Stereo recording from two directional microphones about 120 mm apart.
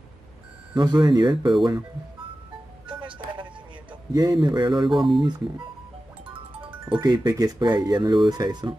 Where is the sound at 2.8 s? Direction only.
45° right (ahead or behind).